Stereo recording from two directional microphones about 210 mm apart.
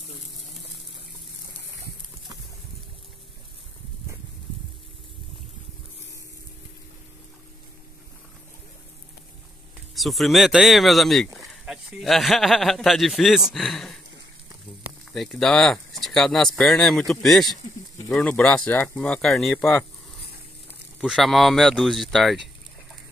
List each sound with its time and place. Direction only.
9.9 s speech: centre (ahead or behind)
15.1 s speech: centre (ahead or behind)
17.9 s a sound: 15° left (ahead or behind)
18.2 s speech: 5° left (ahead or behind)
21.0 s speech: centre (ahead or behind)